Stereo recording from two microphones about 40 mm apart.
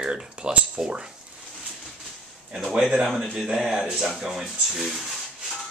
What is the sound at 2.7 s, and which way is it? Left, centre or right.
Speech, centre.